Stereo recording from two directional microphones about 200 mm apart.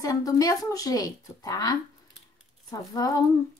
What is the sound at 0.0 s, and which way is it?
A child's voice, 15° left (ahead or behind).